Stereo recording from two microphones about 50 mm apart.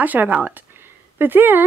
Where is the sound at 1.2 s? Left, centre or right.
Right.